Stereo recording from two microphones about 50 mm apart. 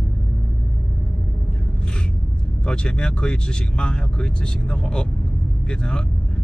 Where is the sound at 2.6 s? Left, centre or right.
Centre.